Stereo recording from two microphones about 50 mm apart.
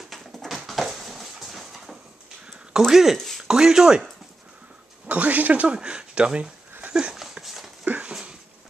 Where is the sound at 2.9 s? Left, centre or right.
Centre.